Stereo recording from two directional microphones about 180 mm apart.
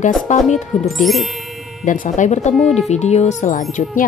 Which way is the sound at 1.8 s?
45° left (ahead or behind).